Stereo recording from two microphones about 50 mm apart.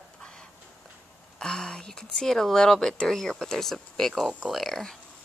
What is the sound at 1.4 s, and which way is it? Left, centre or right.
Speech, centre.